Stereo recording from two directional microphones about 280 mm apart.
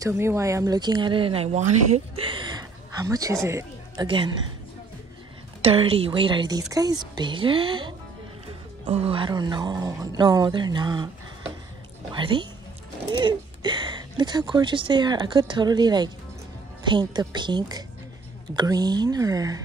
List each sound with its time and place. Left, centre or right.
0.0 s speech: centre
5.6 s a woman's voice: centre
12.1 s speech: centre